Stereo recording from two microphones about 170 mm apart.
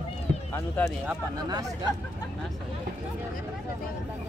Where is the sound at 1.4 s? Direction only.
25° right (ahead or behind).